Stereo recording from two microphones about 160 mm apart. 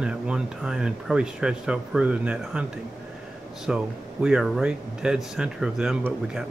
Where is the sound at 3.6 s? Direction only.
5° right (ahead or behind).